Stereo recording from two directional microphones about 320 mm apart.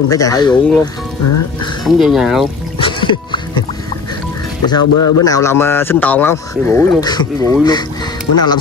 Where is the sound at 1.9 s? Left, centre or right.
Centre.